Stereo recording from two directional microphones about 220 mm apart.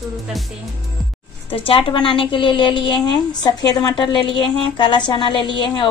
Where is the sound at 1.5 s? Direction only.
25° left (ahead or behind).